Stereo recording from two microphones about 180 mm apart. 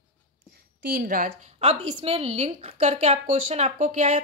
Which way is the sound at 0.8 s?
55° right (ahead or behind).